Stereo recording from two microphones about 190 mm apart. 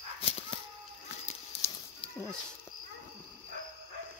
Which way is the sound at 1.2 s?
30° left (ahead or behind).